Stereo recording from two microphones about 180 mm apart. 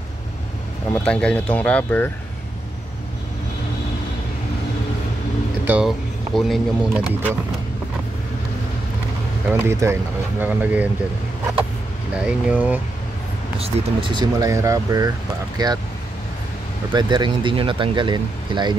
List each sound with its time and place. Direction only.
0.9 s speech: 5° left (ahead or behind)
5.7 s speech: 5° right (ahead or behind)
9.5 s speech: 15° right (ahead or behind)
12.2 s speech: 5° right (ahead or behind)
13.6 s speech: 30° right (ahead or behind)
16.9 s speech: 25° right (ahead or behind)